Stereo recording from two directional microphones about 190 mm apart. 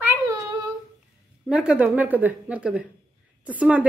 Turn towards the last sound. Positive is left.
turn(degrees=-10)  # may be behind; listen again after turning